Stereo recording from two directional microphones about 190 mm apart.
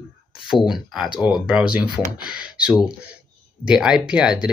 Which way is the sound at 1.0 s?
25° left (ahead or behind).